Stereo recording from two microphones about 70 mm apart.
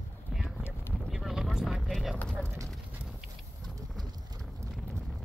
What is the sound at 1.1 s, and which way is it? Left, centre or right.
Vehicle, centre.